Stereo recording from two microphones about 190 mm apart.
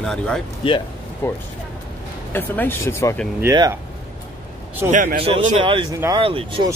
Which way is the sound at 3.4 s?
15° right (ahead or behind).